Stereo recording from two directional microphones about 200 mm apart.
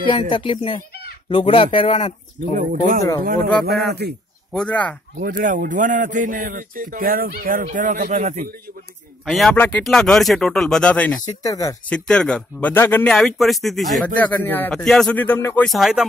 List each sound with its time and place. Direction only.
0.1 s speech: 25° left (ahead or behind)
2.7 s a man's voice: 40° right (ahead or behind)
4.0 s speech: 55° right (ahead or behind)
4.5 s speech: 5° left (ahead or behind)
5.2 s a man's voice: 45° right (ahead or behind)
9.2 s speech: centre (ahead or behind)
11.2 s speech: 15° left (ahead or behind)
11.9 s speech: 5° left (ahead or behind)